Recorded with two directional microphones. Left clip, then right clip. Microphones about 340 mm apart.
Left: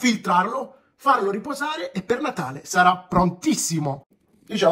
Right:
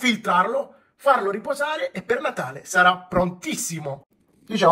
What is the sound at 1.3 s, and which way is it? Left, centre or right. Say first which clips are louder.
Speech: right 2 dB; centre.